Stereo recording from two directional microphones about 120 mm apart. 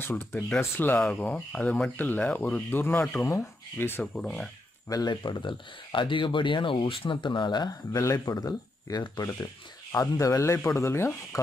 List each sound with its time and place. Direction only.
0.0 s speech: 15° left (ahead or behind)
4.8 s speech: 35° left (ahead or behind)